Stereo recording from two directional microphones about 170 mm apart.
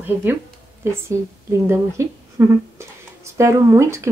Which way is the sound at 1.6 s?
15° right (ahead or behind).